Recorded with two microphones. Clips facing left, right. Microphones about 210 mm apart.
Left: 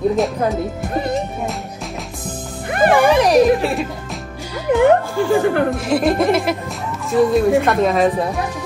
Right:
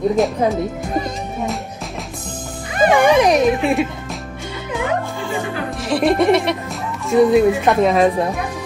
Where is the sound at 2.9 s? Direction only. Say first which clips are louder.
Right 1 dB; centre (ahead or behind).